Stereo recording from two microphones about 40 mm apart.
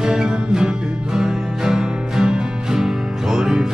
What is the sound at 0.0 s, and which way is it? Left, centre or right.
Music, centre.